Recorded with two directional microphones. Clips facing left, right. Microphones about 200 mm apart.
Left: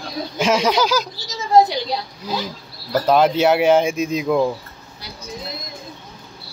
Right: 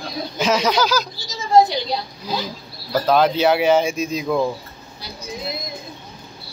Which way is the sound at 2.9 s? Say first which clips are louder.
Left 1 dB; 5° left (ahead or behind).